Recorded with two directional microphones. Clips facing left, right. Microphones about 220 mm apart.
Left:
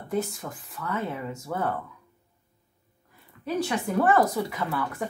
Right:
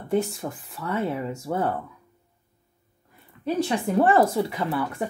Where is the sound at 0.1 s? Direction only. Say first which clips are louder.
Right 5 dB; 30° right (ahead or behind).